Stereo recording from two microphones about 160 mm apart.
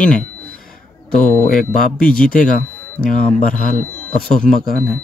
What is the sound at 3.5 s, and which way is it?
Speech, 55° left (ahead or behind).